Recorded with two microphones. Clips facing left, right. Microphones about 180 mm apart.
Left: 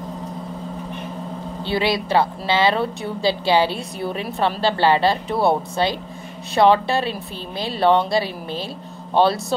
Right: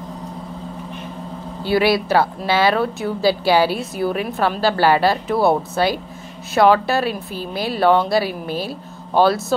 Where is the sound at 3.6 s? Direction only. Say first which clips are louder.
Right 3 dB; 5° right (ahead or behind).